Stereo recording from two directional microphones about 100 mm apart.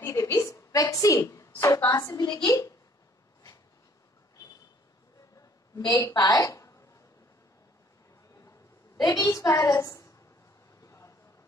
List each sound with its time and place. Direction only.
0.0 s a sound: 30° left (ahead or behind)
1.9 s a woman's voice: 35° left (ahead or behind)
5.8 s a woman's voice: 40° left (ahead or behind)
9.0 s a woman's voice: 35° left (ahead or behind)
10.8 s vehicle: 30° left (ahead or behind)